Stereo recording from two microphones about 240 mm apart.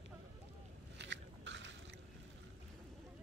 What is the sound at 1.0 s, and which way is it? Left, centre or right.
Biting, right.